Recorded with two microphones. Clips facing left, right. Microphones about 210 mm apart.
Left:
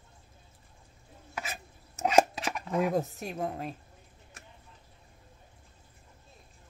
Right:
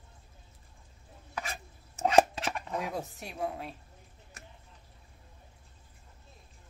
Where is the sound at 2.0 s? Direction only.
10° left (ahead or behind).